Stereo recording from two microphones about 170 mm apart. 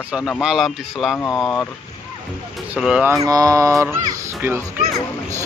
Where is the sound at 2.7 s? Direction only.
5° right (ahead or behind).